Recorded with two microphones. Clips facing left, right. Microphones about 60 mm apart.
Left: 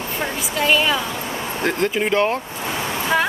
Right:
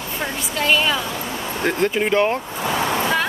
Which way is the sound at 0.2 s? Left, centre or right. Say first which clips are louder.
Left 1 dB; centre.